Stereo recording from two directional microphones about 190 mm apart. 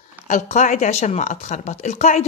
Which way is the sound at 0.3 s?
40° left (ahead or behind).